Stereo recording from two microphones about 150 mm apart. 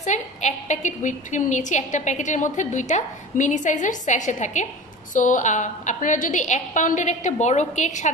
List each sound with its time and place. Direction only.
0.0 s a woman's voice: 50° left (ahead or behind)